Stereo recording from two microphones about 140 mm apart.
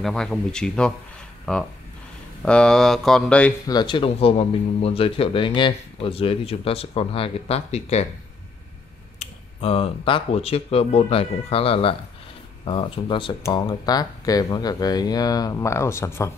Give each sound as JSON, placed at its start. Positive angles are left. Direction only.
{"t": 0.0, "sound": "speech", "side_deg": 0}
{"t": 3.6, "sound": "speech", "side_deg": 30}
{"t": 9.2, "sound": "speech", "side_deg": 45}